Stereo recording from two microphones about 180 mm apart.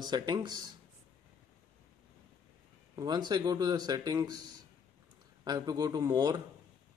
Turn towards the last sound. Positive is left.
turn(degrees=-20)  # may be behind; listen again after turning